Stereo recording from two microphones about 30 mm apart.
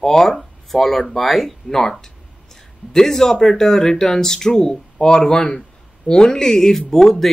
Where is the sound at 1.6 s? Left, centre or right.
Centre.